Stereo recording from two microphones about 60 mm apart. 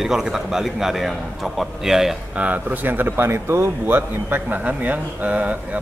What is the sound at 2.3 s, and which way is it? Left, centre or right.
Speech, right.